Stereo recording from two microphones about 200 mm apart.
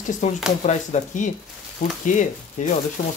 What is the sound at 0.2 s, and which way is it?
Speech, 35° left (ahead or behind).